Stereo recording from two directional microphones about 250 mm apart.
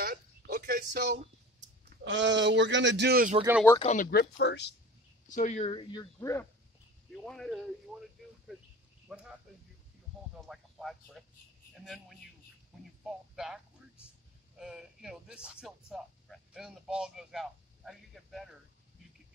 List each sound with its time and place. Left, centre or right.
0.0 s a sound: right
2.0 s speech: right
3.8 s speech: left
5.3 s speech: left; by 7.6 s centre
9.1 s speech: centre
10.5 s speech: centre
14.6 s speech: centre